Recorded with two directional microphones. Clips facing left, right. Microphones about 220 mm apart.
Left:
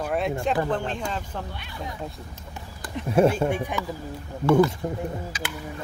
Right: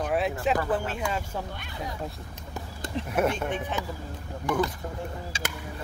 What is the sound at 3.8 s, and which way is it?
Speech, 15° right (ahead or behind).